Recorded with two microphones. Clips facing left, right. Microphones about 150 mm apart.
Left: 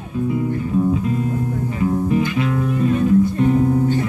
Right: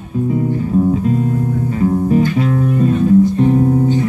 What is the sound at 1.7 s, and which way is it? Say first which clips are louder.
Music: right 5 dB; 40° right (ahead or behind).